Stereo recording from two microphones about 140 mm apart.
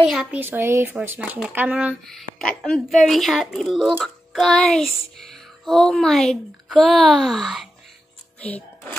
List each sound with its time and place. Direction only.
0.0 s music: 5° right (ahead or behind)
0.4 s speech: 15° right (ahead or behind)
2.0 s music: centre (ahead or behind)
8.4 s speech: 10° left (ahead or behind)